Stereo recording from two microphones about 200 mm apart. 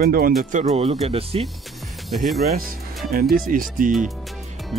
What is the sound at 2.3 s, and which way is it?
Speech, centre (ahead or behind).